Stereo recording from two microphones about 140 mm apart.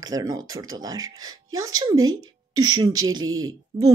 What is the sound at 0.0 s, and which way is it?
Speech, 25° right (ahead or behind).